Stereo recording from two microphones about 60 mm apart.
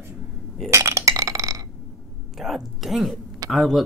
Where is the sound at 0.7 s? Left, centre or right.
Right.